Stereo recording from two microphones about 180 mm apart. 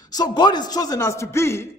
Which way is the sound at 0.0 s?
20° left (ahead or behind).